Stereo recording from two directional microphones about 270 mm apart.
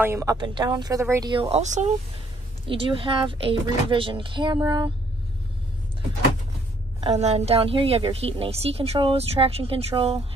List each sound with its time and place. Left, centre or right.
0.0 s a woman's voice: centre
7.0 s a woman's voice: right